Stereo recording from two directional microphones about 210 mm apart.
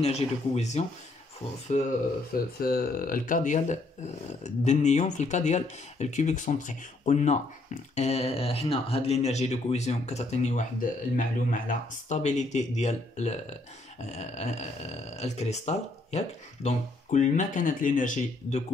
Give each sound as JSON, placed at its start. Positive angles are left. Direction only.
{"t": 0.0, "sound": "speech", "side_deg": 30}
{"t": 2.6, "sound": "speech", "side_deg": 45}